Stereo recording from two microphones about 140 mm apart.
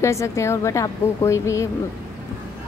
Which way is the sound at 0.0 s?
20° left (ahead or behind).